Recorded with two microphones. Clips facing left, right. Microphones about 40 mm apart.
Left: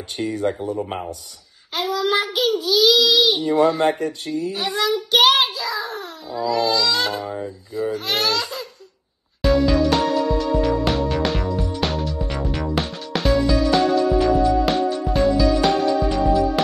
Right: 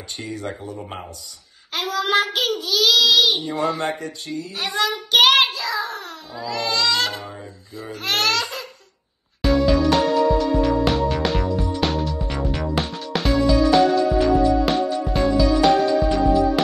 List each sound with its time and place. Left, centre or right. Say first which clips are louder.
0.2 s speech: left 8 dB; left
1.7 s child singing: left 1 dB; right
2.2 s a sound: left 2 dB; right
2.6 s speech: left 1 dB; centre
3.6 s speech: left 5 dB; left
4.0 s speech: left 5 dB; left
4.6 s a child's voice: even; right
5.3 s child singing: right 1 dB; right
5.9 s babbling: left 2 dB; right
6.5 s speech: left 2 dB; right
7.2 s a sound: left 8 dB; centre
8.2 s laughter: right 1 dB; right
9.4 s music: left 1 dB; centre